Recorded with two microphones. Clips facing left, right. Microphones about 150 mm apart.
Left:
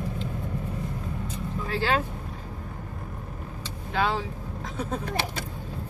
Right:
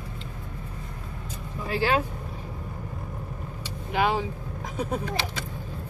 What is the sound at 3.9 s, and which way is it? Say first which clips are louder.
Speech: right 2 dB; 15° right (ahead or behind).